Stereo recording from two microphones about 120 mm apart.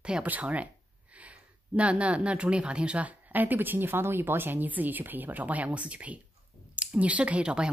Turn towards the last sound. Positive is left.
turn(degrees=-10)  # may be behind; listen again after turning